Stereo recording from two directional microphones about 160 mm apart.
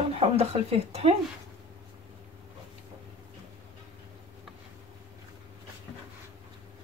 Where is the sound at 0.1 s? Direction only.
40° right (ahead or behind).